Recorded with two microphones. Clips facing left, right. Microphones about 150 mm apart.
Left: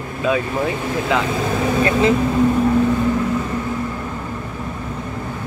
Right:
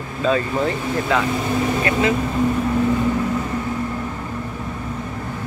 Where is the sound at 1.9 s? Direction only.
30° left (ahead or behind).